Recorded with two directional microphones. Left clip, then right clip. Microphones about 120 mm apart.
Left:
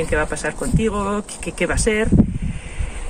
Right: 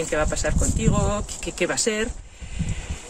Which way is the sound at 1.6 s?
15° right (ahead or behind).